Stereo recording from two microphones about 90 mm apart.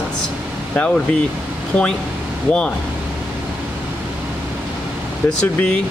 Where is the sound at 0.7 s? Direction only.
10° left (ahead or behind).